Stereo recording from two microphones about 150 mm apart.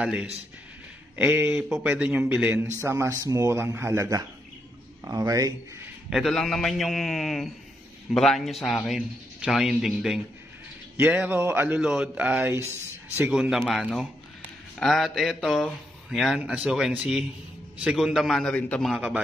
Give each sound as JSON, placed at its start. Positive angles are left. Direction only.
{"t": 0.0, "sound": "a man's voice", "side_deg": -5}
{"t": 6.0, "sound": "a man's voice", "side_deg": 0}